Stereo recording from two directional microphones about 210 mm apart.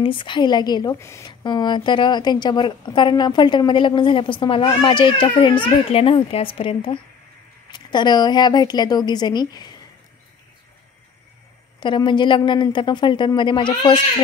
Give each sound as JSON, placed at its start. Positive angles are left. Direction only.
{"t": 0.0, "sound": "a woman's voice", "side_deg": 25}
{"t": 11.8, "sound": "a woman's voice", "side_deg": 20}